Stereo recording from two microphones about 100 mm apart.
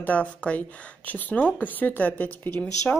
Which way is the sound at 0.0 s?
15° left (ahead or behind).